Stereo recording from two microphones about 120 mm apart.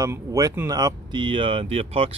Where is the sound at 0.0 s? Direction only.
25° right (ahead or behind).